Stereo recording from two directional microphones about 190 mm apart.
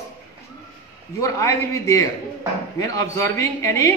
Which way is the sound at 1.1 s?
15° left (ahead or behind).